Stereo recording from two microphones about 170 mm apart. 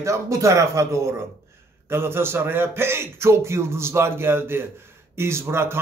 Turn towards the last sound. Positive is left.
turn(degrees=-15)  # may be behind; listen again after turning